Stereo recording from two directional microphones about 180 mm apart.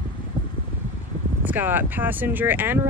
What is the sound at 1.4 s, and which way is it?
Speech, 10° right (ahead or behind).